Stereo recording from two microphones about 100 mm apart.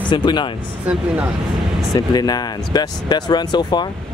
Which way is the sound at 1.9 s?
40° left (ahead or behind).